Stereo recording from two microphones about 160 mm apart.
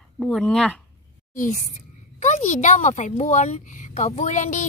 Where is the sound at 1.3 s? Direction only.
55° left (ahead or behind).